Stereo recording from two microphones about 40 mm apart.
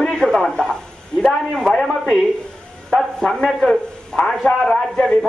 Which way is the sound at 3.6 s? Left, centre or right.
Centre.